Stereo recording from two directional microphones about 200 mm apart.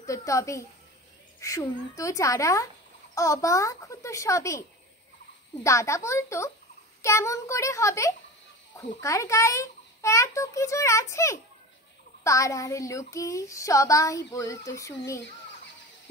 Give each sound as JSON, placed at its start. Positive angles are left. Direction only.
{"t": 0.0, "sound": "a woman's voice", "side_deg": 15}
{"t": 1.4, "sound": "child singing", "side_deg": 15}